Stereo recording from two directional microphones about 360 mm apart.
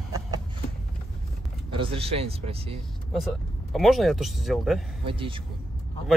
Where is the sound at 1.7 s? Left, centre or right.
Centre.